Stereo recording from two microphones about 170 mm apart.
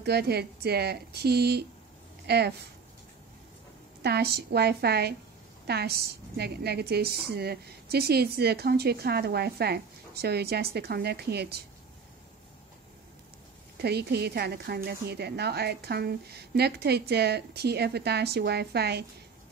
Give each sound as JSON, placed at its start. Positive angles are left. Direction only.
{"t": 0.0, "sound": "a woman's voice", "side_deg": -70}
{"t": 4.0, "sound": "a woman's voice", "side_deg": -70}
{"t": 13.7, "sound": "a woman's voice", "side_deg": -70}